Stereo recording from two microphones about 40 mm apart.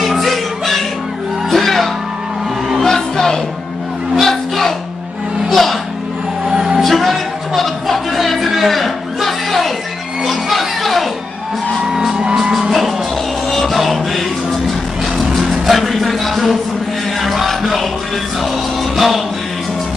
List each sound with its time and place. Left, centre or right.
0.0 s music: centre
6.4 s music: centre
6.8 s music: centre
11.9 s music: centre
12.5 s music: centre
18.9 s music: centre